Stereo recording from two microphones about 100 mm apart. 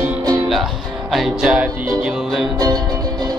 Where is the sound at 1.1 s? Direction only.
5° right (ahead or behind).